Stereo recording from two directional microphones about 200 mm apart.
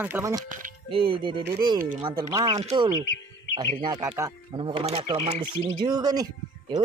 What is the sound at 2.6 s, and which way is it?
A man's voice, 30° right (ahead or behind).